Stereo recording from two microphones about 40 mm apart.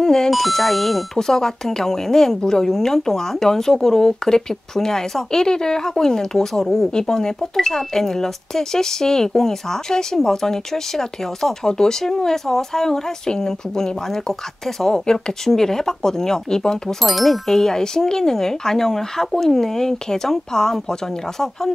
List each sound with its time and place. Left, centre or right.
0.0 s music: centre
0.3 s speech: centre
17.0 s speech: centre